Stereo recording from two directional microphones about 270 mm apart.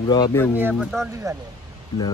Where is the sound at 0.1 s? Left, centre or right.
Centre.